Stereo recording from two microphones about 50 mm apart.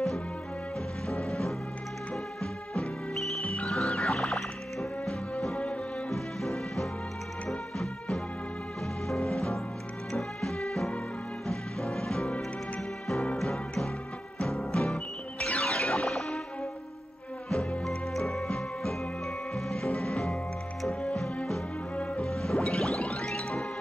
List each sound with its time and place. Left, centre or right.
1.0 s music: centre
15.7 s music: centre
17.5 s music: centre